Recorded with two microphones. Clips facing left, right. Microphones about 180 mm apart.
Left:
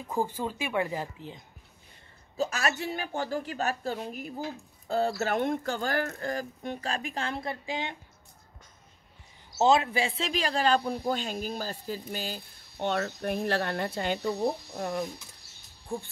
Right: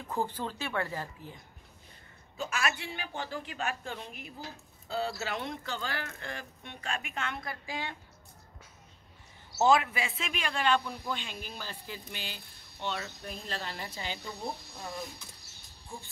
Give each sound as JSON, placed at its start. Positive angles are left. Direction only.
{"t": 0.1, "sound": "speech", "side_deg": 10}
{"t": 2.3, "sound": "speech", "side_deg": 40}
{"t": 9.6, "sound": "speech", "side_deg": 25}